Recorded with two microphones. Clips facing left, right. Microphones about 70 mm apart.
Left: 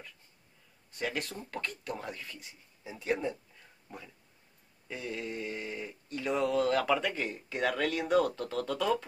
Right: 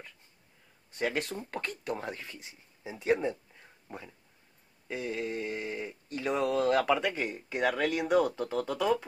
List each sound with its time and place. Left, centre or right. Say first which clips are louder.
0.9 s speech: right 4 dB; right
4.8 s speech: right 4 dB; centre